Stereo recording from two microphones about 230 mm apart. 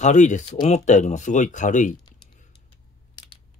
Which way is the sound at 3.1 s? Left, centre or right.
Left.